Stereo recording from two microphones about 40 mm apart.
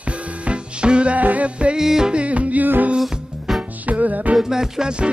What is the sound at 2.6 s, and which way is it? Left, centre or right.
Music, right.